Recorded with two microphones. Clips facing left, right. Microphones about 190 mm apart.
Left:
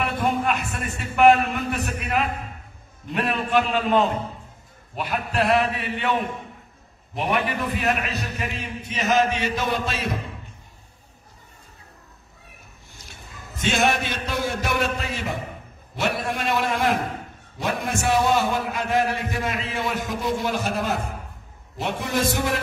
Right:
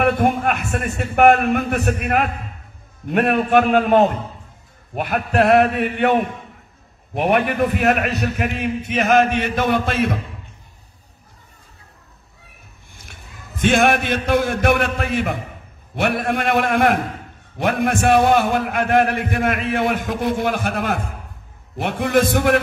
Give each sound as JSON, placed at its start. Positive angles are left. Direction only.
{"t": 0.0, "sound": "a man's voice", "side_deg": -55}
{"t": 12.9, "sound": "a man's voice", "side_deg": -55}